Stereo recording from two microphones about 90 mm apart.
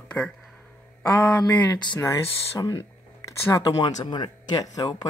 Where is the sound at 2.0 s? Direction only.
30° left (ahead or behind).